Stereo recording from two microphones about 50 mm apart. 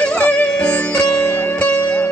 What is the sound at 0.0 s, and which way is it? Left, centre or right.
Music, left.